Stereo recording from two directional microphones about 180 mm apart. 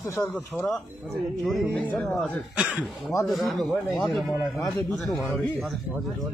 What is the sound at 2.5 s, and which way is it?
Speech, 5° right (ahead or behind).